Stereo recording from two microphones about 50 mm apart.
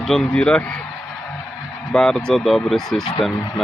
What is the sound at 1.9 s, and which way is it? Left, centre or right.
Speech, centre.